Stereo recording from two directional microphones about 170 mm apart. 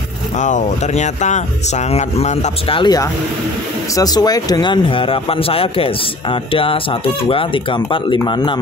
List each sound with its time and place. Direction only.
0.4 s speech: 45° left (ahead or behind)
2.8 s speech: 20° left (ahead or behind)